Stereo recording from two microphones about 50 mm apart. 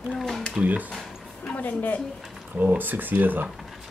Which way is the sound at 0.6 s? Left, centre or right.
Right.